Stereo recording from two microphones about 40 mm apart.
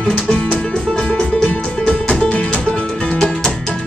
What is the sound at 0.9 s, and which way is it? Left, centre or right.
Music, left.